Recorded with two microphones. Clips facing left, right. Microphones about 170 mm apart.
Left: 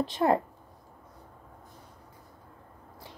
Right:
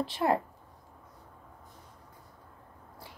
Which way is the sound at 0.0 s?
20° left (ahead or behind).